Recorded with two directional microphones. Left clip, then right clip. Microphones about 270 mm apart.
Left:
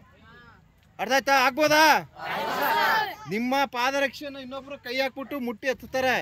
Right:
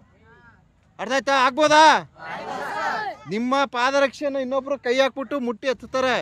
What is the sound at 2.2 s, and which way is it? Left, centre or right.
Chatter, centre.